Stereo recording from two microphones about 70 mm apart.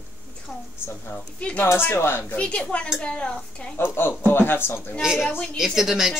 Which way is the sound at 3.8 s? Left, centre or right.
Left.